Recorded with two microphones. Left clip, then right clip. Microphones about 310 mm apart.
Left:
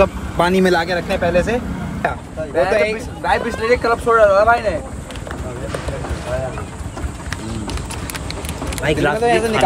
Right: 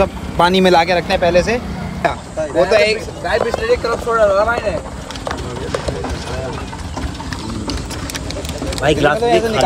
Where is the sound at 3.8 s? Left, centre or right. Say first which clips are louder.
Left 3 dB; left.